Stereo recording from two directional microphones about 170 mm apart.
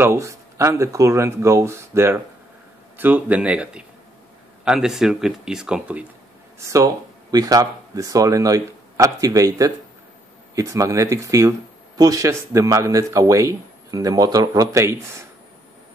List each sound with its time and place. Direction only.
0.0 s speech: 15° right (ahead or behind)
6.6 s speech: 20° right (ahead or behind)